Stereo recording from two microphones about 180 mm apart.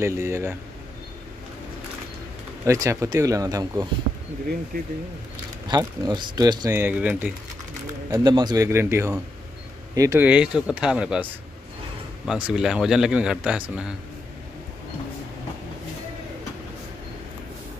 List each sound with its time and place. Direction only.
0.0 s speech: 15° right (ahead or behind)
2.6 s speech: 15° right (ahead or behind)
5.7 s speech: 20° right (ahead or behind)
6.8 s speech: 10° right (ahead or behind)
8.1 s speech: 25° right (ahead or behind); by 11.2 s 5° right (ahead or behind)
12.3 s a man's voice: 5° right (ahead or behind)